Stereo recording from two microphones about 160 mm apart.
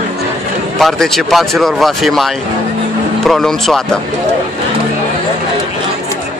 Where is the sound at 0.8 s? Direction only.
Centre (ahead or behind).